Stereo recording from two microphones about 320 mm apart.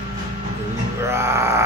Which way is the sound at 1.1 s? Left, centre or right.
Centre.